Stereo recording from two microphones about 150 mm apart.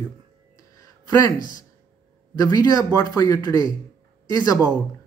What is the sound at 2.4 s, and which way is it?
Speech, 25° left (ahead or behind).